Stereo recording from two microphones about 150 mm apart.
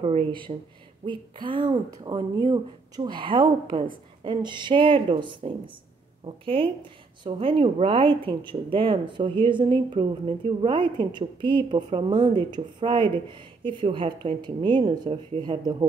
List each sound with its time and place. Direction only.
0.0 s speech: 40° right (ahead or behind)